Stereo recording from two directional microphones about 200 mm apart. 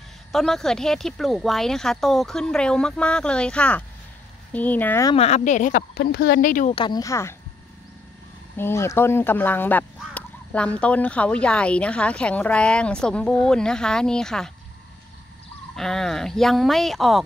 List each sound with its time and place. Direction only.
0.3 s speech: centre (ahead or behind)
5.1 s speech: 30° left (ahead or behind)
6.7 s speech: 20° left (ahead or behind)
8.5 s speech: 10° left (ahead or behind)
15.7 s speech: centre (ahead or behind)